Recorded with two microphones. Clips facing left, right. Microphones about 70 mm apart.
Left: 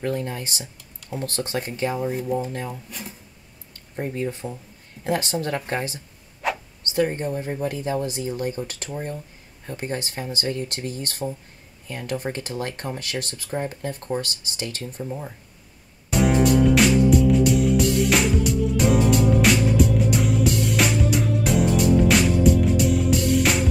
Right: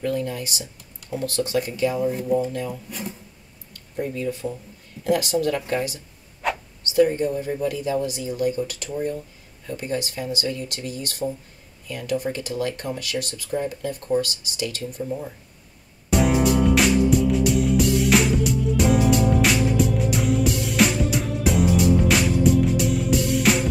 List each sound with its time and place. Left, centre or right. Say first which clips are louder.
0.0 s speech: right 1 dB; left
2.9 s speech: right 4 dB; centre
3.7 s speech: right 1 dB; left
6.4 s a sound: even; centre
6.8 s speech: right 6 dB; left
16.1 s music: even; centre